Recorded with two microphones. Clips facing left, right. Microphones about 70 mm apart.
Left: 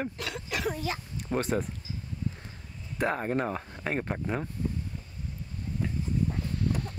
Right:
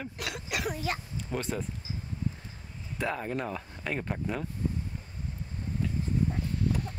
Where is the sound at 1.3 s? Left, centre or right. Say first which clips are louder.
Left 5 dB; left.